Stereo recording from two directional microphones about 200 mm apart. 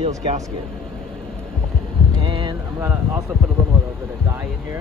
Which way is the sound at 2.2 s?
25° right (ahead or behind).